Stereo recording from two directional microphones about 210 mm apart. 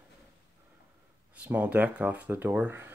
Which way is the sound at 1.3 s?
5° right (ahead or behind).